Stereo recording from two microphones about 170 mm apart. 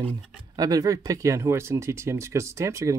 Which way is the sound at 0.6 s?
20° right (ahead or behind).